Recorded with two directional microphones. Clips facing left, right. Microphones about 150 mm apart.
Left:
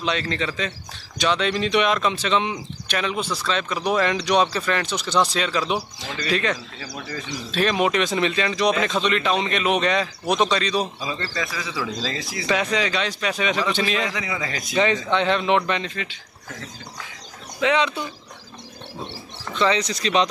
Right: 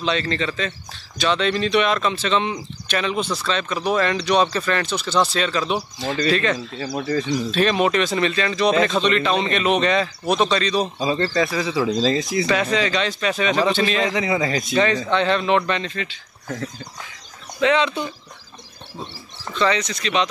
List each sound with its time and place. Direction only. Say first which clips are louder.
0.0 s speech: right 2 dB; 10° left (ahead or behind)
6.8 s speech: right 10 dB; 45° right (ahead or behind)
7.5 s speech: right 1 dB; 5° left (ahead or behind)
11.0 s speech: right 8 dB; 35° right (ahead or behind); by 12.4 s 20° right (ahead or behind)
12.4 s speech: left 2 dB; 15° left (ahead or behind)
14.0 s speech: right 7 dB; 25° right (ahead or behind)
14.7 s speech: left 1 dB; 20° left (ahead or behind)
17.6 s speech: right 2 dB; 10° left (ahead or behind)
19.8 s speech: left 1 dB; 35° left (ahead or behind)